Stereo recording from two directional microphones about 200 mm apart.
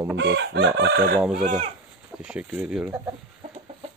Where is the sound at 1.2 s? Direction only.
5° right (ahead or behind).